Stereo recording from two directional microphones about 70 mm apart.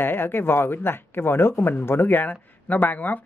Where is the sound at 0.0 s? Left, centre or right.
Left.